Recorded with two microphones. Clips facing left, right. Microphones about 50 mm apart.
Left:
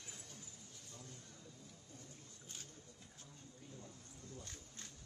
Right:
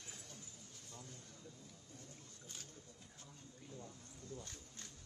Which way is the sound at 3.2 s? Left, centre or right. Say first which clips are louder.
Even; right.